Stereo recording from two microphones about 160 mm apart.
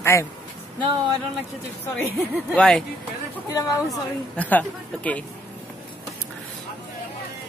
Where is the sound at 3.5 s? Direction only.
20° left (ahead or behind).